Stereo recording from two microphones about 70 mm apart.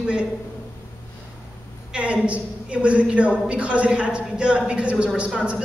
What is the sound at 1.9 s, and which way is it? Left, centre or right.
A woman's voice, centre.